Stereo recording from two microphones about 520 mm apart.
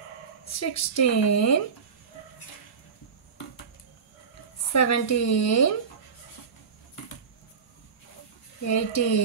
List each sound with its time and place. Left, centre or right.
0.5 s speech: left
4.7 s speech: left
8.6 s speech: left